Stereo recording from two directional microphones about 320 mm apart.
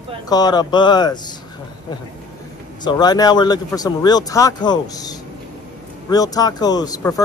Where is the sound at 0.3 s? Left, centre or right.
Centre.